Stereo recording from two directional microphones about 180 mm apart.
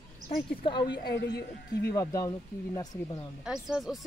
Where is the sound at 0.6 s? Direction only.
25° left (ahead or behind).